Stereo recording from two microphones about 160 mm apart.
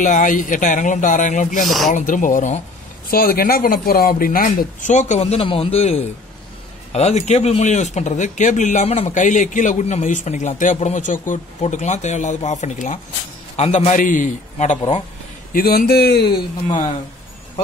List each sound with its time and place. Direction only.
0.0 s speech: 55° left (ahead or behind)
3.1 s speech: 65° left (ahead or behind); by 14.8 s 50° left (ahead or behind)
15.5 s speech: 70° left (ahead or behind)